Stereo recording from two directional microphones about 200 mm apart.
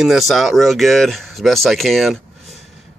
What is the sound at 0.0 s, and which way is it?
Speech, centre (ahead or behind).